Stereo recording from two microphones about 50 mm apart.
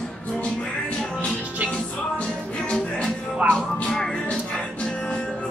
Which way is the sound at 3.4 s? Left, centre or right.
Centre.